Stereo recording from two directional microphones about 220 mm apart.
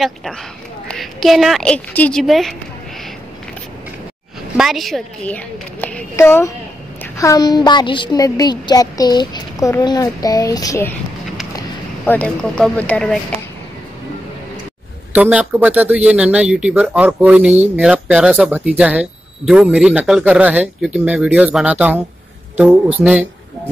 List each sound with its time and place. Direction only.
0.0 s a woman's voice: centre (ahead or behind)
4.6 s a woman's voice: centre (ahead or behind)
12.1 s speech: 5° left (ahead or behind)
15.1 s speech: 5° right (ahead or behind)